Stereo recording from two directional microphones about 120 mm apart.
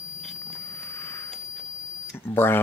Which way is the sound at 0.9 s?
20° left (ahead or behind).